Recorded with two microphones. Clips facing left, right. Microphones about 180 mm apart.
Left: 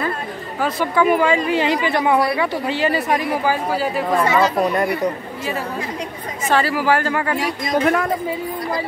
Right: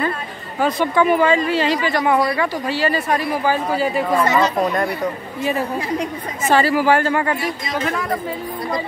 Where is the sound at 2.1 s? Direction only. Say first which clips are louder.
Even; 5° left (ahead or behind).